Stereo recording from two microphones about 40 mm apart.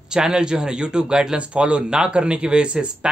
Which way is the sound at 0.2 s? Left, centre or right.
Centre.